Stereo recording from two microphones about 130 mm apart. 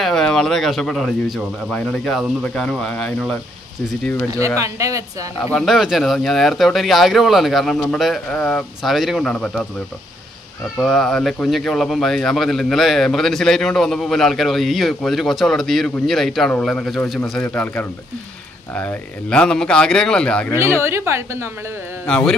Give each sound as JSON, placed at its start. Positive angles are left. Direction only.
{"t": 0.0, "sound": "a man's voice", "side_deg": 5}
{"t": 4.6, "sound": "a woman's voice", "side_deg": -25}
{"t": 5.5, "sound": "speech", "side_deg": 0}
{"t": 10.8, "sound": "a man's voice", "side_deg": 5}
{"t": 20.5, "sound": "a woman's voice", "side_deg": -20}
{"t": 22.0, "sound": "a man's voice", "side_deg": 5}